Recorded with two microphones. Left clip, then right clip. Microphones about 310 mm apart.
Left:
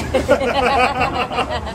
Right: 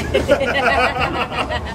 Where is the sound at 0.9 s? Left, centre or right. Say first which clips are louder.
Left 1 dB; left.